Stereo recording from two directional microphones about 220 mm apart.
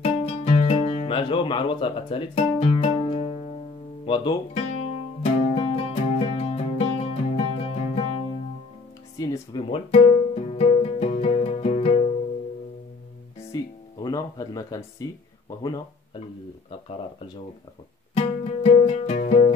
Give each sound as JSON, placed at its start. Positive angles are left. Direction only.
{"t": 0.0, "sound": "music", "side_deg": 30}
{"t": 9.2, "sound": "music", "side_deg": 20}
{"t": 13.5, "sound": "speech", "side_deg": 15}
{"t": 18.1, "sound": "music", "side_deg": 25}